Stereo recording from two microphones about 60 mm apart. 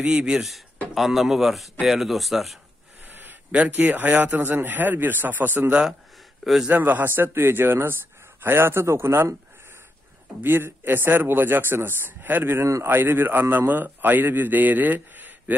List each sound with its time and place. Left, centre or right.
0.0 s speech: centre
0.9 s speech: centre
3.5 s a man's voice: right
6.4 s speech: centre
6.7 s a man's voice: right
10.4 s a man's voice: right